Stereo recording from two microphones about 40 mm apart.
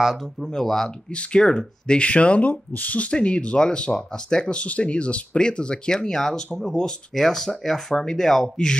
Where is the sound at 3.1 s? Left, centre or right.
Left.